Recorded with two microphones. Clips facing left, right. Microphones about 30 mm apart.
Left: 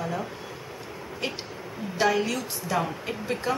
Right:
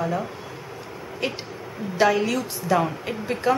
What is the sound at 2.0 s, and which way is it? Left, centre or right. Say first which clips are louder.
A woman's voice: right 4 dB; centre.